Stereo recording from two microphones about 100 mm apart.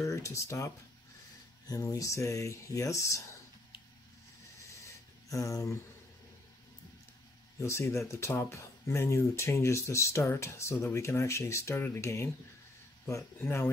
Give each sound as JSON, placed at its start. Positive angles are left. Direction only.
{"t": 0.0, "sound": "speech", "side_deg": 30}
{"t": 1.9, "sound": "speech", "side_deg": 35}
{"t": 5.3, "sound": "speech", "side_deg": 30}
{"t": 7.6, "sound": "speech", "side_deg": 25}